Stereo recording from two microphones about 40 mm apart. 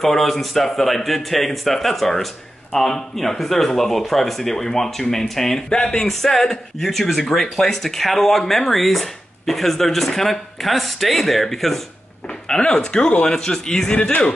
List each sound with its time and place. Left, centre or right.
0.0 s speech: centre
12.4 s speech: left
13.9 s speech: left